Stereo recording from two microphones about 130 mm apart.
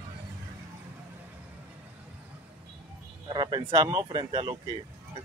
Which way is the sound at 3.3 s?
35° right (ahead or behind).